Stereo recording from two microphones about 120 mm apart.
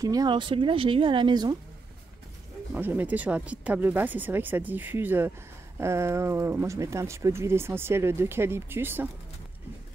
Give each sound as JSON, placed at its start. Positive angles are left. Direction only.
{"t": 0.0, "sound": "a woman's voice", "side_deg": -30}
{"t": 2.7, "sound": "speech", "side_deg": -15}